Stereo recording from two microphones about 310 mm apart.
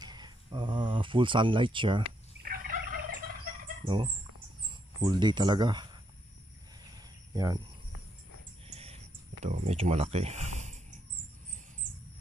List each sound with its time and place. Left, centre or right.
0.0 s a sound: centre
2.4 s turkey: right
3.6 s fowl: centre
5.0 s speech: centre
7.3 s speech: centre
8.6 s a sound: centre
9.4 s speech: right